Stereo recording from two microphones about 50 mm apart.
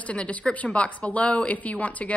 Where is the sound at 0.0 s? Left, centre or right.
Left.